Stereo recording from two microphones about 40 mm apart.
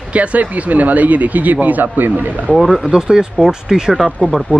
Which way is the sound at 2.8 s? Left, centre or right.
Centre.